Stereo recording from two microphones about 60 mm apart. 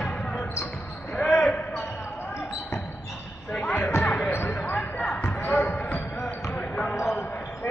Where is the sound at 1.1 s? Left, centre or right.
Centre.